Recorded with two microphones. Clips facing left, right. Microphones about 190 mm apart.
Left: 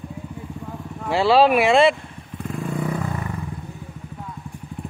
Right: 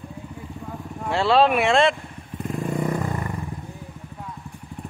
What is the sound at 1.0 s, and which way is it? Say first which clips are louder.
Speech: left 2 dB; 5° left (ahead or behind).